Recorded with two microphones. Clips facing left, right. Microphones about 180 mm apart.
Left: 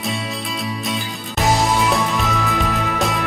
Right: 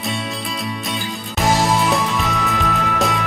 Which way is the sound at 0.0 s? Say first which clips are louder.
Even; centre (ahead or behind).